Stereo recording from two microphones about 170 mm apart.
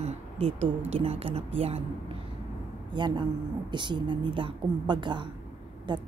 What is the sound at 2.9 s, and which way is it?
A woman's voice, 25° right (ahead or behind).